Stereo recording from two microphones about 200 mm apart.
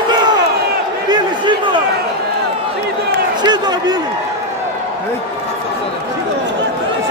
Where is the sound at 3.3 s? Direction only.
20° right (ahead or behind).